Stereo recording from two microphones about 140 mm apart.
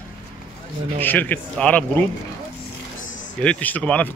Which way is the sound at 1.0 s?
15° left (ahead or behind).